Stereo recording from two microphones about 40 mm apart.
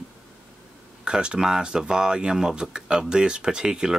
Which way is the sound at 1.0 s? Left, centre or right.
Right.